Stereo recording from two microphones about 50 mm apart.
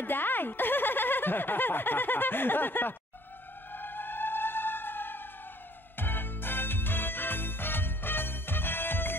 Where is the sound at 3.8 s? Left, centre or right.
Left.